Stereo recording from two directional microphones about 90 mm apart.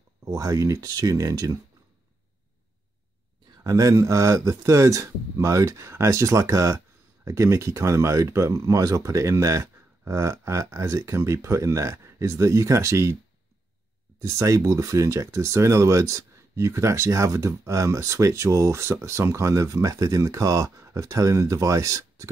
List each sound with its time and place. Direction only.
0.2 s speech: 40° right (ahead or behind)
3.6 s speech: 40° right (ahead or behind)
14.2 s speech: 35° right (ahead or behind)